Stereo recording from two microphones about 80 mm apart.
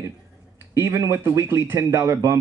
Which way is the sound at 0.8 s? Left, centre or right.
Right.